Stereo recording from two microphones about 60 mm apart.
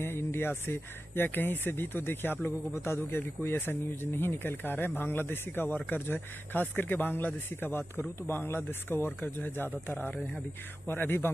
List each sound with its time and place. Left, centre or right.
0.0 s speech: left